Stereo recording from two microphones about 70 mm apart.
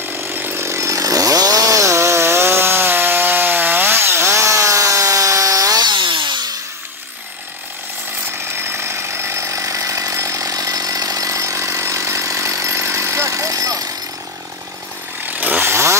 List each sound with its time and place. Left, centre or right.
0.2 s chainsaw: right
8.5 s chainsaw: right
15.3 s chainsaw: right